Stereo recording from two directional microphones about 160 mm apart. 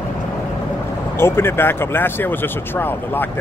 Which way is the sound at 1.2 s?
15° left (ahead or behind).